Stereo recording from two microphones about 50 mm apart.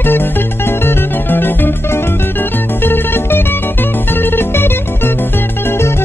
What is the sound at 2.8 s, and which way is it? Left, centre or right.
Music, left.